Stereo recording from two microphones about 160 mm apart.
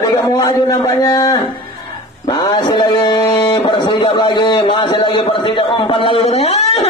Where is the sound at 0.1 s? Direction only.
25° left (ahead or behind).